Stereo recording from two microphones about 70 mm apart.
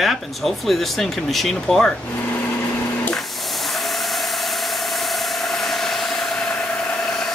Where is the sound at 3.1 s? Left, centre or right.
Centre.